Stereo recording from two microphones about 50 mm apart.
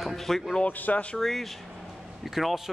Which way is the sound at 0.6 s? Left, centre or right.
Left.